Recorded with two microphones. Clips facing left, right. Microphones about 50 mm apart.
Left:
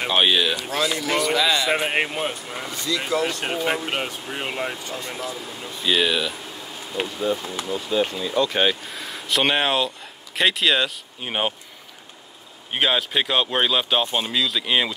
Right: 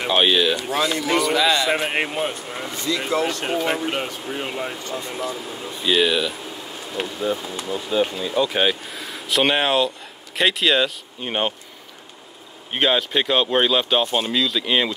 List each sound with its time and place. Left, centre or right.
0.0 s speech: centre
0.6 s speech: centre
2.7 s speech: right
3.3 s speech: centre
4.9 s speech: centre
12.7 s speech: centre